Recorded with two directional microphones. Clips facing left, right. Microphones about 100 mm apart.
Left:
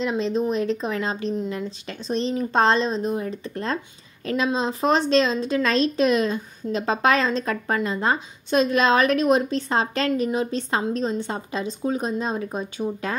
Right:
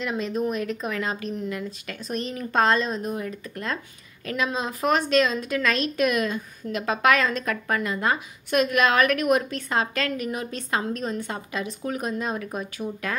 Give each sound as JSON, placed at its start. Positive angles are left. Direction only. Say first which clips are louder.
{"t": 0.0, "sound": "a woman's voice", "louder": "left 3 dB", "side_deg": 25}